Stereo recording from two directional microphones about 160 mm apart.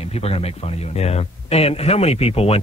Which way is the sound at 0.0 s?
40° left (ahead or behind).